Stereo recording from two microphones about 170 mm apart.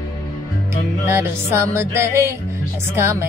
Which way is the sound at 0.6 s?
15° right (ahead or behind).